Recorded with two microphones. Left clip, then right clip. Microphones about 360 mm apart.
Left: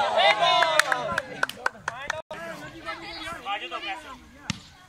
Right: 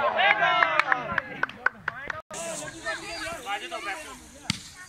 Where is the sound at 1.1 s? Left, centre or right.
Left.